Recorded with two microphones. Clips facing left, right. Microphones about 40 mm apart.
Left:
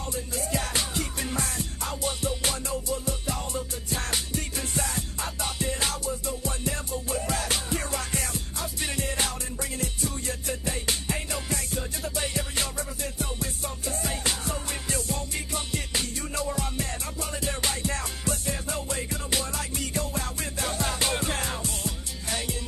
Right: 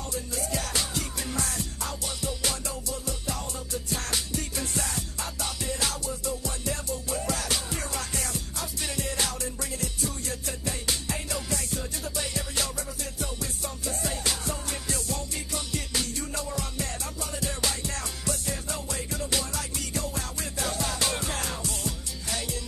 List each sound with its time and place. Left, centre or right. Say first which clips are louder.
0.1 s music: left 2 dB; left